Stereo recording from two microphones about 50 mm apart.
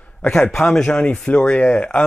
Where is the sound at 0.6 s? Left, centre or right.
Left.